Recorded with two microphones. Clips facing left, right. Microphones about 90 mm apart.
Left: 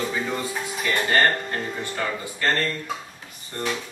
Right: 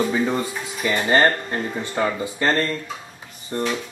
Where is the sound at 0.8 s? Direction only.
20° right (ahead or behind).